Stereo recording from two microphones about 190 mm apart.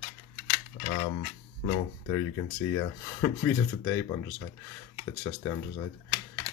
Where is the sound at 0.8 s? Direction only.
30° left (ahead or behind).